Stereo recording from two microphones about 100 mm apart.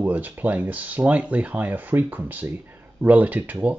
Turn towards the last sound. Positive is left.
turn(degrees=-15)  # may be behind; listen again after turning